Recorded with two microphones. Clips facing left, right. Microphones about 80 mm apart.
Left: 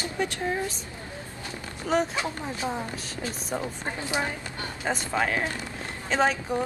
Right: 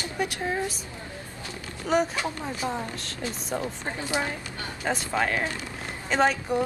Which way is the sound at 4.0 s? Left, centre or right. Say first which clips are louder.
Right 1 dB; left.